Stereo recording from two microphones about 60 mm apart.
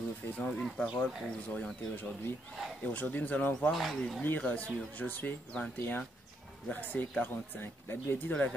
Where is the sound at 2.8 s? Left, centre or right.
Left.